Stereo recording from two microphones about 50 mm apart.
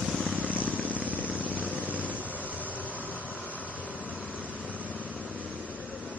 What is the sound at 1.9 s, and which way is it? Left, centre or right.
Vehicle, left.